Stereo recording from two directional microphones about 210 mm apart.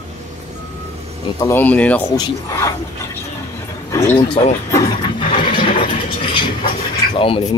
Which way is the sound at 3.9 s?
15° left (ahead or behind).